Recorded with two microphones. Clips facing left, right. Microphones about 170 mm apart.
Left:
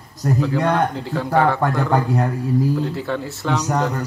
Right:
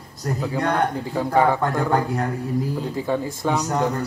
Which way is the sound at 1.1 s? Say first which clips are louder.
Left 1 dB; 15° right (ahead or behind).